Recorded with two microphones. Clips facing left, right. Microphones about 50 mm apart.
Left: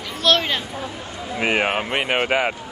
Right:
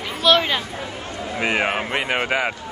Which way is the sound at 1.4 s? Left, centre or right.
Centre.